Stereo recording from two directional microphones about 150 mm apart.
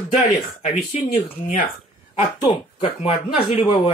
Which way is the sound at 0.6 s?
55° left (ahead or behind).